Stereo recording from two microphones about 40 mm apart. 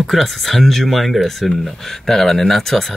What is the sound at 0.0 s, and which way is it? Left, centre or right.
Speech, centre.